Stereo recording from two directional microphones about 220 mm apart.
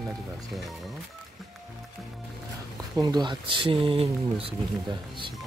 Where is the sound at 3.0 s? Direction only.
20° right (ahead or behind).